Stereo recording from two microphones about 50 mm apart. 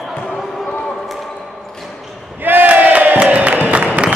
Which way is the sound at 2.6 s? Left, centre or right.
Right.